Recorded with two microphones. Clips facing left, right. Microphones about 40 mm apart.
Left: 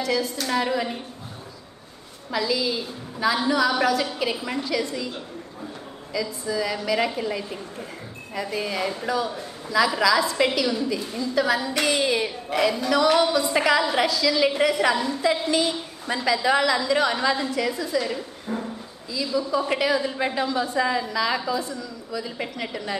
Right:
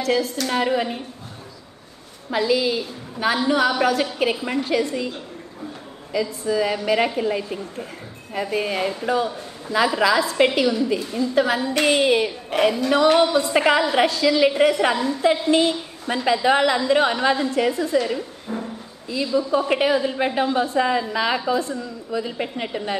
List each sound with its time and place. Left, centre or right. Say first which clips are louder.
0.0 s a woman's voice: right 3 dB; right
0.5 s a woman's voice: right 2 dB; right
2.3 s a woman's voice: right 4 dB; right
6.1 s a woman's voice: right 5 dB; right
17.9 s a woman's voice: right 3 dB; right
18.5 s speech: even; centre
19.0 s a woman's voice: right 4 dB; right
22.1 s a woman's voice: right 5 dB; right